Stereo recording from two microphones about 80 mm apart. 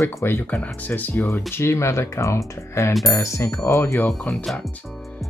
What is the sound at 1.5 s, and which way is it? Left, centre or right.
Speech, left.